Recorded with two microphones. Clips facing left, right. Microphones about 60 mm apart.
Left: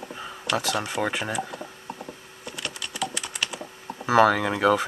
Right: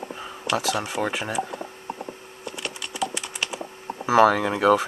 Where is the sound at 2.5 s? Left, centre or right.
Centre.